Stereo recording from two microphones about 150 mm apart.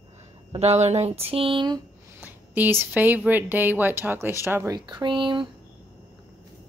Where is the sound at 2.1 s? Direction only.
10° right (ahead or behind).